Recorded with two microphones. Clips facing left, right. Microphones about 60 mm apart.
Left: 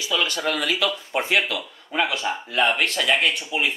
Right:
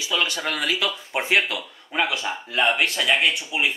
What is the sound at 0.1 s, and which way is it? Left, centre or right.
Speech, centre.